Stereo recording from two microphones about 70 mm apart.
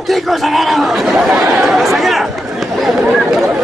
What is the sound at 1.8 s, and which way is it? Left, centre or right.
Speech, centre.